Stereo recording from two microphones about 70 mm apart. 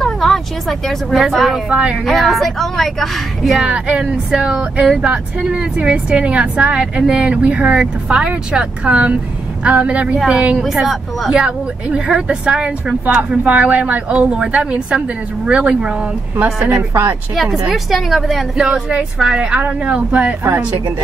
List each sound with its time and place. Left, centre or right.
0.0 s vehicle: centre
1.1 s a woman's voice: centre
1.7 s speech: centre
2.0 s a woman's voice: centre
3.5 s speech: centre
10.6 s speech: centre
17.6 s a woman's voice: centre
18.7 s a woman's voice: centre; by 20.8 s right